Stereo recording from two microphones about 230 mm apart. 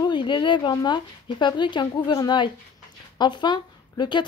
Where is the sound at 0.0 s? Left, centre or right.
Centre.